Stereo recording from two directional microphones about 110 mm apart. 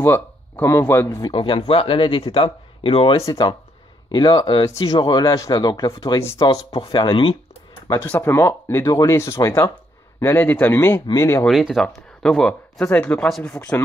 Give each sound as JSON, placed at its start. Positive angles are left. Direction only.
{"t": 0.0, "sound": "speech", "side_deg": 20}
{"t": 1.2, "sound": "speech", "side_deg": 50}
{"t": 4.1, "sound": "speech", "side_deg": 40}
{"t": 6.4, "sound": "speech", "side_deg": 50}
{"t": 8.1, "sound": "speech", "side_deg": 20}
{"t": 11.4, "sound": "speech", "side_deg": 0}